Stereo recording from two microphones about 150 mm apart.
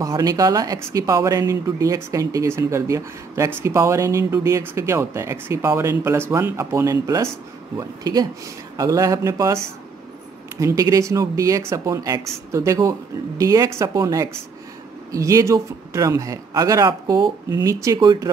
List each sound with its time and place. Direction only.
0.0 s speech: 25° right (ahead or behind)
10.6 s speech: 20° right (ahead or behind)